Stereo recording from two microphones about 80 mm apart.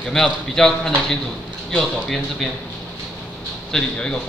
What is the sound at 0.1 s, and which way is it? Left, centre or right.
A man's voice, centre.